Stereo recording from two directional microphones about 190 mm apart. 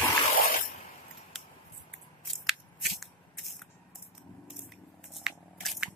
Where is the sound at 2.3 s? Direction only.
Centre (ahead or behind).